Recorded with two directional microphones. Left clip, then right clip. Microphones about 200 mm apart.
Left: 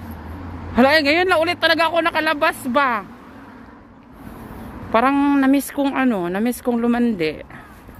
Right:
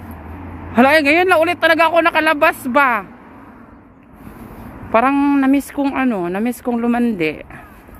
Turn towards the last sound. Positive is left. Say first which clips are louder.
# right 2 dB
turn(degrees=-15)  # may be behind; listen again after turning